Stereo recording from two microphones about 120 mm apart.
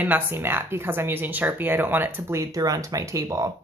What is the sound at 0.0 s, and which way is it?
Speech, 15° right (ahead or behind).